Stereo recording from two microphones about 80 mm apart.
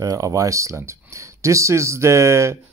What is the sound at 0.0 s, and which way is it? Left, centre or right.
Speech, right.